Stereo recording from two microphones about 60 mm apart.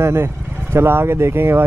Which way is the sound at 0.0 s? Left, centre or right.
Right.